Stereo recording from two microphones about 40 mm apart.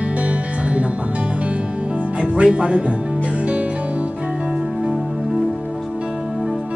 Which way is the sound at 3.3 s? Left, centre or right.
Right.